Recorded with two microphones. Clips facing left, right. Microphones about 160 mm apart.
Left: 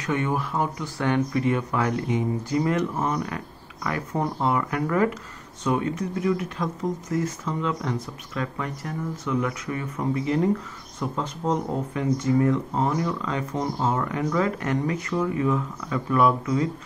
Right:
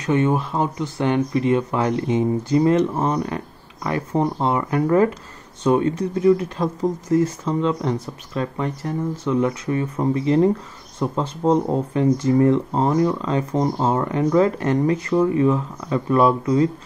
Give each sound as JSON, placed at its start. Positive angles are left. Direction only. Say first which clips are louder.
{"t": 0.0, "sound": "speech", "louder": "right 6 dB", "side_deg": -25}